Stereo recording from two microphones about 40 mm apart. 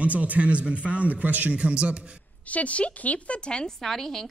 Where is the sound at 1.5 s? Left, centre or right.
Right.